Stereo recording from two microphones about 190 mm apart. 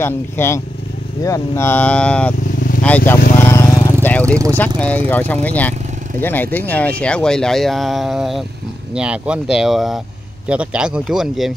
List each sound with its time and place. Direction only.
0.0 s speech: 10° left (ahead or behind)
3.1 s vehicle: 15° left (ahead or behind)
4.6 s speech: 5° left (ahead or behind)